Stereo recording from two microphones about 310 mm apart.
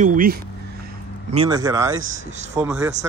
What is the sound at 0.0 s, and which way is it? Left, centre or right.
Speech, right.